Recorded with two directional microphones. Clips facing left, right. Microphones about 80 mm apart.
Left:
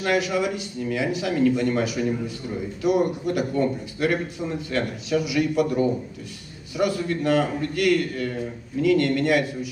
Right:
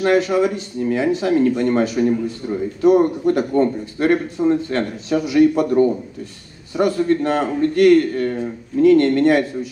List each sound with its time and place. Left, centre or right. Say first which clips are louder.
0.0 s speech: right 7 dB; right